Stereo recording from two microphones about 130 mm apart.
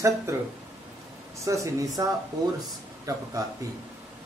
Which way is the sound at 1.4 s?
25° right (ahead or behind).